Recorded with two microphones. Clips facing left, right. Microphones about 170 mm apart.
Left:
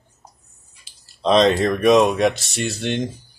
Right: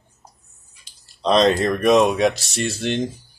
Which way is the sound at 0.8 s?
Centre (ahead or behind).